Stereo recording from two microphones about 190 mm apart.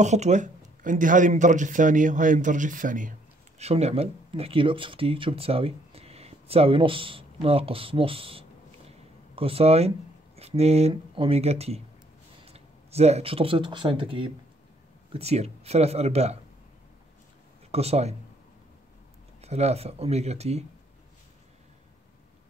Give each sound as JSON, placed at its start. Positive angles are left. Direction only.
{"t": 0.0, "sound": "speech", "side_deg": -40}
{"t": 17.6, "sound": "speech", "side_deg": -30}
{"t": 19.4, "sound": "speech", "side_deg": -35}